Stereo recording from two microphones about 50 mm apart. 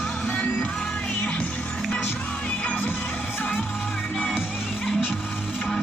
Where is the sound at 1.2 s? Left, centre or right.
Left.